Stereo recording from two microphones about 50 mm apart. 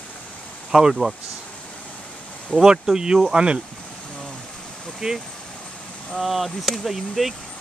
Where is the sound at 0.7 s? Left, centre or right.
Centre.